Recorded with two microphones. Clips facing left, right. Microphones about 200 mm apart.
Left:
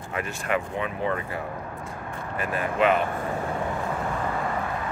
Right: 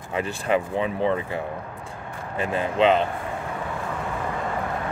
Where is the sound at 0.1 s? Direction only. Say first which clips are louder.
Right 4 dB; 30° right (ahead or behind).